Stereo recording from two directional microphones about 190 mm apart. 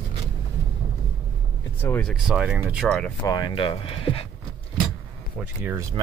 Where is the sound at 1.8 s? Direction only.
10° left (ahead or behind).